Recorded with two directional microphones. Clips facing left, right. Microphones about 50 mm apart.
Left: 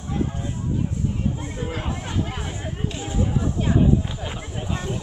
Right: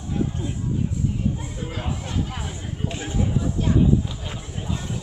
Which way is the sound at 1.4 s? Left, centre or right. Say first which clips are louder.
Left 2 dB; left.